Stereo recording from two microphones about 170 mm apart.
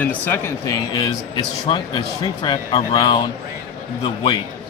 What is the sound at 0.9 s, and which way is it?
A man's voice, 30° left (ahead or behind).